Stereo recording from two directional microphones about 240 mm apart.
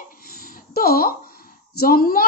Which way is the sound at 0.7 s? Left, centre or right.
Left.